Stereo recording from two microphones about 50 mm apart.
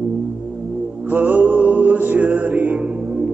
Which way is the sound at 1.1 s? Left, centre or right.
Right.